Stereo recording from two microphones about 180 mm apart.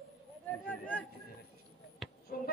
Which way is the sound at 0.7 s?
10° left (ahead or behind).